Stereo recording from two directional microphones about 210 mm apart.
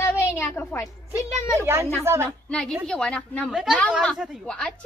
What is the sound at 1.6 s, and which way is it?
Speech, 10° right (ahead or behind).